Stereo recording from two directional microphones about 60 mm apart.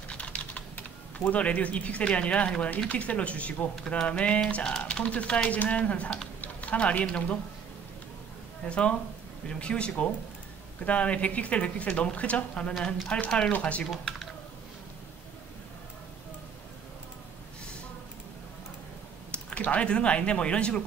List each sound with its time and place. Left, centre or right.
0.1 s typing: left
1.1 s speech: left
8.6 s speech: centre
12.7 s speech: centre
13.5 s speech: left
19.3 s speech: left